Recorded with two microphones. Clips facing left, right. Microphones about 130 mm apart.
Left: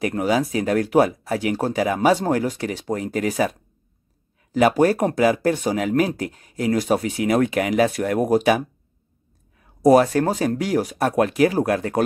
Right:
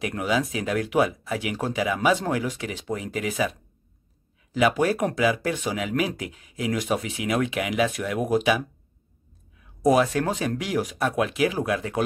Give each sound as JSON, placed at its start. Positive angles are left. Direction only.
{"t": 0.0, "sound": "speech", "side_deg": 40}